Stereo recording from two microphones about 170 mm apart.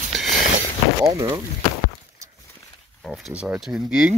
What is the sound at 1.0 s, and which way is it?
Speech, 20° right (ahead or behind).